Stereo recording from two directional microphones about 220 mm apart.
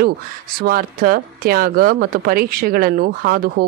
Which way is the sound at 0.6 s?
40° right (ahead or behind).